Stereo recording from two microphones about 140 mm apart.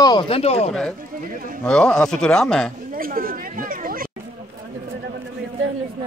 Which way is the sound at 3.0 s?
90° right.